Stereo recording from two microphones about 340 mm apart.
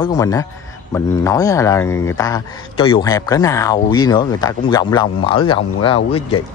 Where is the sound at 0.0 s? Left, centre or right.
Centre.